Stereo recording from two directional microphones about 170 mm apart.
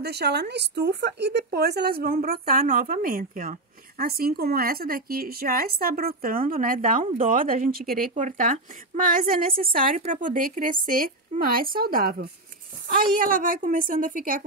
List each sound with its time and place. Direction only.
0.0 s a woman's voice: 75° right (ahead or behind); by 14.4 s 55° right (ahead or behind)